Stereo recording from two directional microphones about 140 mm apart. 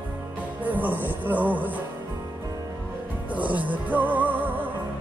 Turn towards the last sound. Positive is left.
turn(degrees=-15)  # may be behind; listen again after turning